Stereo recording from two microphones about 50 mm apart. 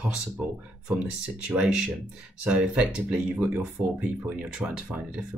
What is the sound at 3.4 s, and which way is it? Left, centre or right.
Speech, right.